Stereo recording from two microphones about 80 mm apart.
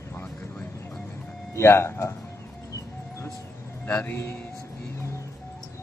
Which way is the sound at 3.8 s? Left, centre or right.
Left.